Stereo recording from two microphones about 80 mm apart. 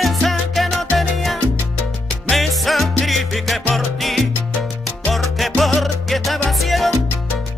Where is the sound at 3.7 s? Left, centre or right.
Centre.